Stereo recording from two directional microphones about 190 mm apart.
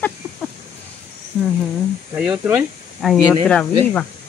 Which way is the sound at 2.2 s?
5° right (ahead or behind).